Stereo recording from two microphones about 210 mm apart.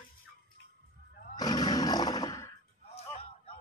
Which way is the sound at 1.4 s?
20° left (ahead or behind).